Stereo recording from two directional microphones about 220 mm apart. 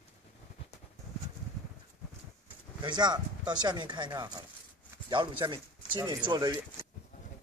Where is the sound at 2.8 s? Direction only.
20° right (ahead or behind).